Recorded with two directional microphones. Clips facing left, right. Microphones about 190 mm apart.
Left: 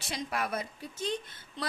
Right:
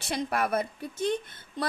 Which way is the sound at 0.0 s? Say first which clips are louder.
Right 6 dB; 55° right (ahead or behind).